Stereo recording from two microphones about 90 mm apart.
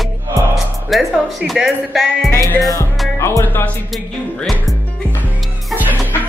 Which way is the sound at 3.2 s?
25° left (ahead or behind).